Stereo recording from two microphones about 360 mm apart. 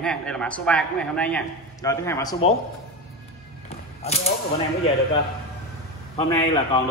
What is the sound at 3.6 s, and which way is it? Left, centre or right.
Music, centre.